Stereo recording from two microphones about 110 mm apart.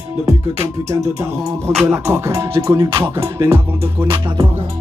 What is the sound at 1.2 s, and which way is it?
Music, 25° right (ahead or behind).